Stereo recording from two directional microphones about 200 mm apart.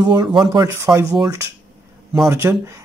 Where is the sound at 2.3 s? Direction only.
15° right (ahead or behind).